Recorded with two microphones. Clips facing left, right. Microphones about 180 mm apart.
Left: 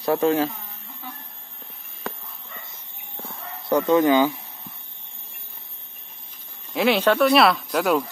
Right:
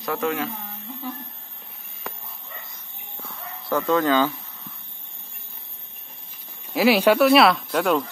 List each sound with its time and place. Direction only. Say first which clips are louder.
0.0 s speech: left 6 dB; 30° left (ahead or behind)
3.6 s speech: left 3 dB; 20° left (ahead or behind)
6.7 s speech: right 2 dB; 5° right (ahead or behind)